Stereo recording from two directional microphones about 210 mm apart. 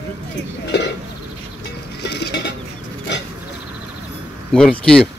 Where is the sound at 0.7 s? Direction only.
55° left (ahead or behind).